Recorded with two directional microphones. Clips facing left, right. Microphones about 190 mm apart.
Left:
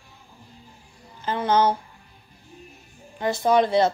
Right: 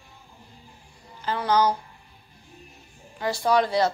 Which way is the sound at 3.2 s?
20° left (ahead or behind).